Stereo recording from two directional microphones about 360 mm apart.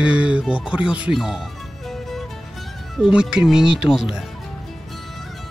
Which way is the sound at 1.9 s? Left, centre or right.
Centre.